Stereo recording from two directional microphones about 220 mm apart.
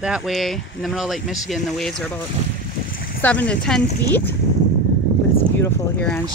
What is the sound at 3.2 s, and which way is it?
Speech, 5° left (ahead or behind).